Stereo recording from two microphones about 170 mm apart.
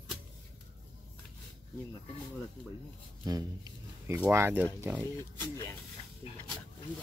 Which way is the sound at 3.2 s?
20° right (ahead or behind).